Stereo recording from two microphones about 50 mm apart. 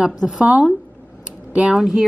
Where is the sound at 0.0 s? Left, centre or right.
Centre.